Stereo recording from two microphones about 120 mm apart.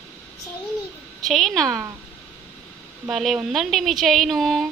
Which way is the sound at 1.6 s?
25° right (ahead or behind).